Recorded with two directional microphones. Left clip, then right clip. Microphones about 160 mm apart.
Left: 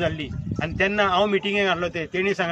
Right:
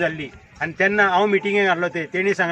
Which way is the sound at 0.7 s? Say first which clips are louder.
Right 3 dB; 30° left (ahead or behind).